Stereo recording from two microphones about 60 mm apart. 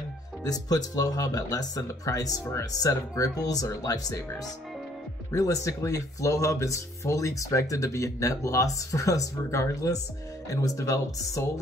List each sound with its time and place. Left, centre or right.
0.4 s speech: left
5.3 s speech: left